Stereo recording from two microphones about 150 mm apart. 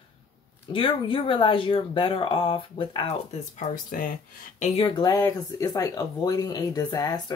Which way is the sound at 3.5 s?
60° left (ahead or behind).